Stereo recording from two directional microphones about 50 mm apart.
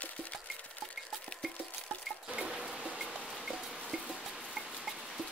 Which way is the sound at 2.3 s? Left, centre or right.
Centre.